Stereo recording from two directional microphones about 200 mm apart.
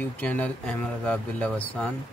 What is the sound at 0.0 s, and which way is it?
Speech, 10° left (ahead or behind).